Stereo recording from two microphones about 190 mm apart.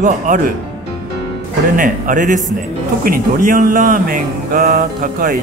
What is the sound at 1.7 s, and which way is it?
Speech, 45° right (ahead or behind).